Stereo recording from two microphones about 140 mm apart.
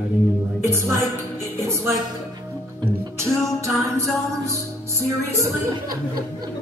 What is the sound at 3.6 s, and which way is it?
Music, 20° right (ahead or behind).